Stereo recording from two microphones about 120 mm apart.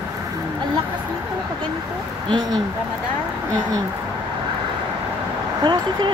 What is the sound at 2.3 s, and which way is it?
Speech, 35° right (ahead or behind).